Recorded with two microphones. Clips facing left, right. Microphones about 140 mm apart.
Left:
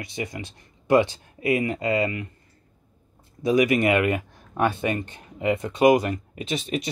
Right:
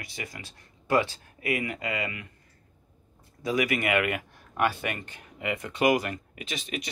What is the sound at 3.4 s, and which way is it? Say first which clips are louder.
Speech: left 7 dB; 20° left (ahead or behind).